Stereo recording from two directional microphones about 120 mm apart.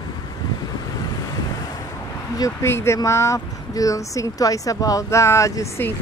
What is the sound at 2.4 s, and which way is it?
Speech, 20° left (ahead or behind).